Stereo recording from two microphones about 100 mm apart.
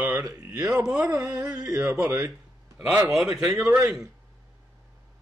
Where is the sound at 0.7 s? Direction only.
5° right (ahead or behind).